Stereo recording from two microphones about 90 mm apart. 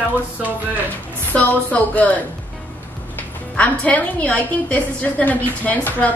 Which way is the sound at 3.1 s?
15° left (ahead or behind).